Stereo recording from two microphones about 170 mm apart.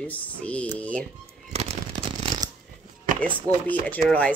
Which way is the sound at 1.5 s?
40° right (ahead or behind).